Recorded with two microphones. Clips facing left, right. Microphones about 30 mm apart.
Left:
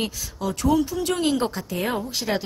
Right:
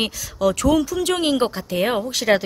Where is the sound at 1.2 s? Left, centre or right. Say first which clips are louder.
Right 3 dB; right.